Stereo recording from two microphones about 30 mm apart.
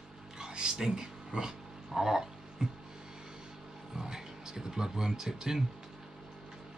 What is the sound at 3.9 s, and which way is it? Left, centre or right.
Speech, centre.